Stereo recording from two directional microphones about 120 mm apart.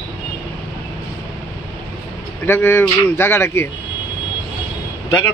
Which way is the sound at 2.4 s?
20° left (ahead or behind).